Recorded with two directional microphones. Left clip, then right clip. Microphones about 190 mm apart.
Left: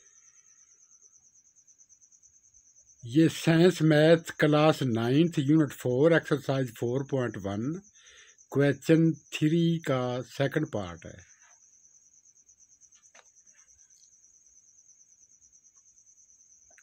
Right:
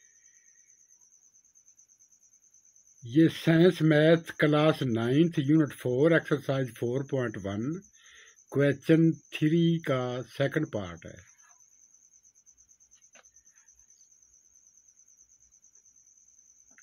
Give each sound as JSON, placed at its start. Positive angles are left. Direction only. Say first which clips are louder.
{"t": 3.0, "sound": "speech", "louder": "even", "side_deg": 35}